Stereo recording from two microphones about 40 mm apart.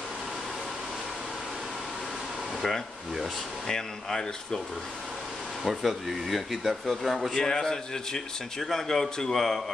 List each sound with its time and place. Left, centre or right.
3.6 s speech: centre
5.6 s speech: centre
7.3 s speech: centre